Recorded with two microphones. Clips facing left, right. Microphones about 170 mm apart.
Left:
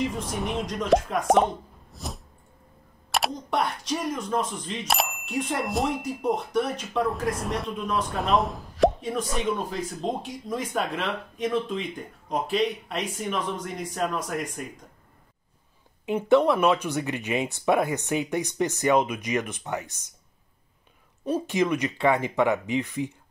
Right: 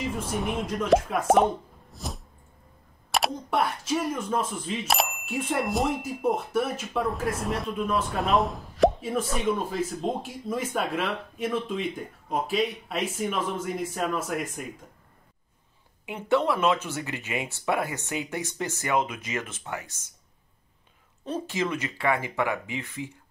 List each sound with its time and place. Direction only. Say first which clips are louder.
0.0 s speech: left 1 dB; centre (ahead or behind)
16.1 s speech: left 5 dB; 20° left (ahead or behind)
21.3 s speech: left 5 dB; 15° left (ahead or behind)